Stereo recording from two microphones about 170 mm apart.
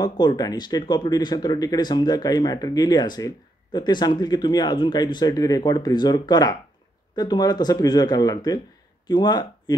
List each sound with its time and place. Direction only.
0.0 s speech: 25° left (ahead or behind)